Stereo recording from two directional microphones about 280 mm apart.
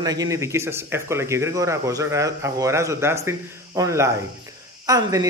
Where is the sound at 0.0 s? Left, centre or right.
Centre.